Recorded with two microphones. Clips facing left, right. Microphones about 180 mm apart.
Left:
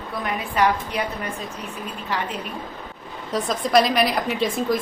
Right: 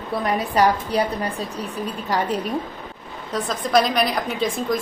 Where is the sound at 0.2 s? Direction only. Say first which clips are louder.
Right 3 dB; 35° right (ahead or behind).